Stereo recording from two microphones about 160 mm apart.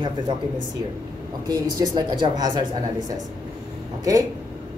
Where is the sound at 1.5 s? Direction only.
25° right (ahead or behind).